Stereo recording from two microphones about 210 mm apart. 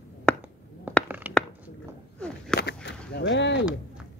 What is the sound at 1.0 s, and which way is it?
Mechanisms, 10° right (ahead or behind).